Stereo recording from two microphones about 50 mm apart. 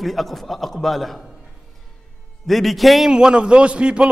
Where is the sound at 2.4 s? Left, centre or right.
Centre.